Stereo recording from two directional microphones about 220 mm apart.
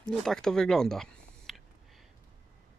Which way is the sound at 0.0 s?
5° left (ahead or behind).